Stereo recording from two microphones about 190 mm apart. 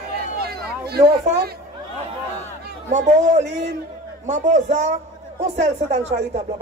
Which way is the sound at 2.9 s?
35° right (ahead or behind).